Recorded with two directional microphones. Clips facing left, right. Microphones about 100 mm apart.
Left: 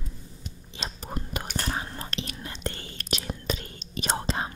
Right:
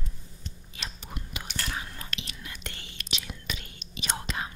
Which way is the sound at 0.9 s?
40° left (ahead or behind).